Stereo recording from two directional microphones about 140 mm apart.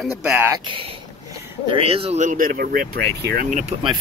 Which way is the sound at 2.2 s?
75° right (ahead or behind).